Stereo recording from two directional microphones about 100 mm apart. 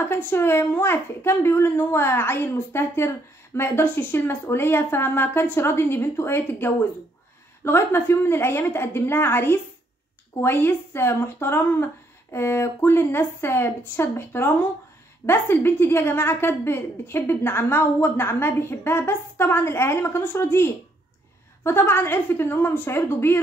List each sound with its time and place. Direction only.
0.1 s a woman's voice: 25° left (ahead or behind)